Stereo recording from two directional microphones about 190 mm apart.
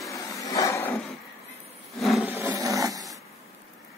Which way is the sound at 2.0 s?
Centre (ahead or behind).